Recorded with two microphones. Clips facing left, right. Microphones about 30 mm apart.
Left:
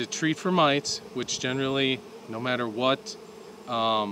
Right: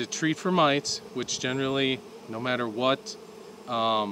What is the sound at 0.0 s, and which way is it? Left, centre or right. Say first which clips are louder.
Speech: even; centre.